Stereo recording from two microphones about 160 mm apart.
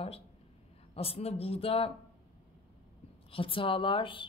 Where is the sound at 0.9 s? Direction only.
40° left (ahead or behind).